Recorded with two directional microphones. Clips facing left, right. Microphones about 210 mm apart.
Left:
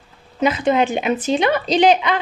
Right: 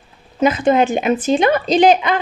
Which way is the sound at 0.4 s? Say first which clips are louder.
Right 3 dB; 45° right (ahead or behind).